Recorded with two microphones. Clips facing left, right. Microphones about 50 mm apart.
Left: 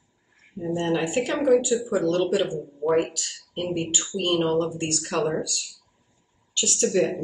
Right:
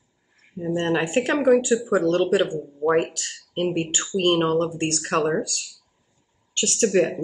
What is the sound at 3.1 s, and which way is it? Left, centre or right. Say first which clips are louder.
Speech: right 1 dB; right.